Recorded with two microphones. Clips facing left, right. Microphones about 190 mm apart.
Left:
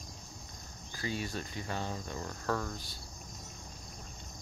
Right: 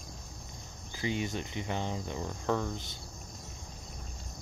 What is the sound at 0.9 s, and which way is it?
Cricket, 20° right (ahead or behind).